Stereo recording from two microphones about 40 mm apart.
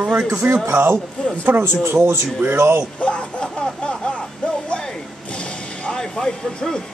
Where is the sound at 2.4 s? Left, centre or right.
Right.